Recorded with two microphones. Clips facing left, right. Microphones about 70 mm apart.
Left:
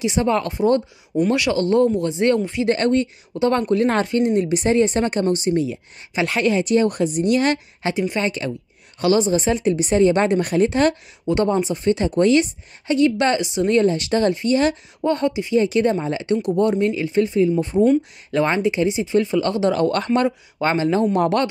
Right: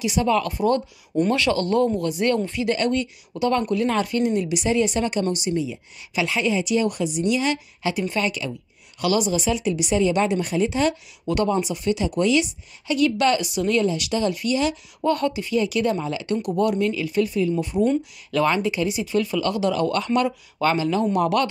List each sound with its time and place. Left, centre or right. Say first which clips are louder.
0.0 s a woman's voice: left 1 dB; left
2.7 s a woman's voice: left 5 dB; left
5.5 s a woman's voice: left 5 dB; left
7.9 s speech: left 3 dB; left
8.3 s a woman's voice: left 3 dB; left
11.2 s a woman's voice: left 3 dB; left
13.7 s a woman's voice: left 6 dB; left
15.0 s speech: left 2 dB; left
15.6 s a woman's voice: left 4 dB; left
20.1 s a woman's voice: left 3 dB; left